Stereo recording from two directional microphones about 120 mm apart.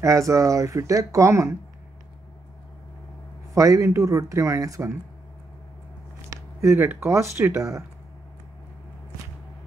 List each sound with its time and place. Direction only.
0.0 s speech: 25° right (ahead or behind)
3.5 s speech: 25° right (ahead or behind)
6.3 s a sound: 25° right (ahead or behind)
7.1 s speech: 25° right (ahead or behind)